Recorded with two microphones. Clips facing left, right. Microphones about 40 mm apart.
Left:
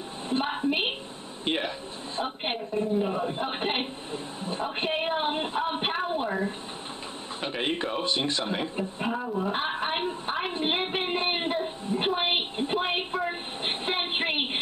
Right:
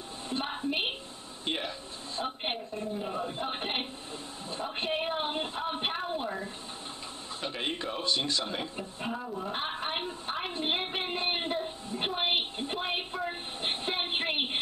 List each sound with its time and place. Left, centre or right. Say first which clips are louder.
0.3 s music: left 6 dB; left
1.4 s a man's voice: left 5 dB; left
7.4 s a man's voice: left 5 dB; left
9.0 s a sound: left 6 dB; left